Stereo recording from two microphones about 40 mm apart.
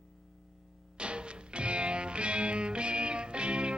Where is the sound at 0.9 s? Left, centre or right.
Right.